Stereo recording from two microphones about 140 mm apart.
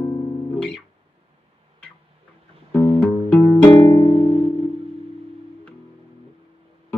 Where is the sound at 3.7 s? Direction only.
30° left (ahead or behind).